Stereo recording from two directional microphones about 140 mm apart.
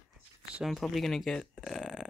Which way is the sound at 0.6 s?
Centre (ahead or behind).